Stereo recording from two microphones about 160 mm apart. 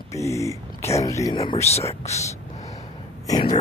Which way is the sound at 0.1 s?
20° left (ahead or behind).